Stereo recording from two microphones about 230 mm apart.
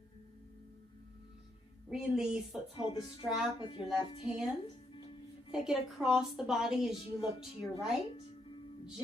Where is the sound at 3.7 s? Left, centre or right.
Left.